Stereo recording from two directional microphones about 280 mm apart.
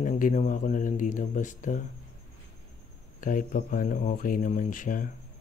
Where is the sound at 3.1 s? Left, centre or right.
Left.